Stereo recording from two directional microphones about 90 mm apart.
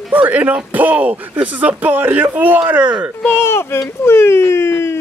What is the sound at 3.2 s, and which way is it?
Speech, 25° left (ahead or behind).